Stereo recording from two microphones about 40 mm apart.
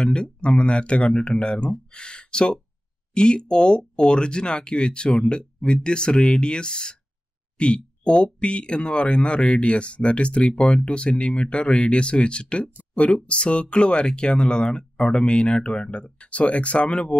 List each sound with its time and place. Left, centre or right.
0.0 s speech: left